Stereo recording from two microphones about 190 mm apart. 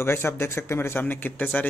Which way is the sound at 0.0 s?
15° left (ahead or behind).